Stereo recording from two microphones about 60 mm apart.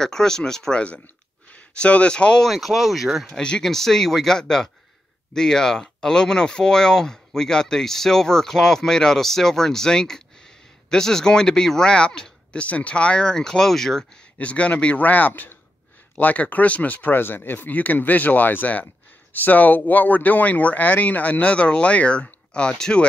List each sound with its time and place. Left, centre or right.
0.0 s speech: centre
2.4 s speech: centre
3.3 s speech: centre
14.4 s speech: left